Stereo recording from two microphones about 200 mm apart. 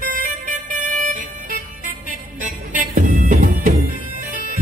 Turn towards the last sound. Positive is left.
turn(degrees=-40)  # may be behind; listen again after turning